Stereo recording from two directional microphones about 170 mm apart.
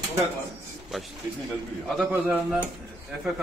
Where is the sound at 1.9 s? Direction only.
5° right (ahead or behind).